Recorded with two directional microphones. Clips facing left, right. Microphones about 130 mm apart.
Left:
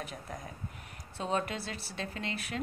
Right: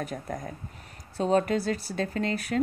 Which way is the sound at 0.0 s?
45° right (ahead or behind).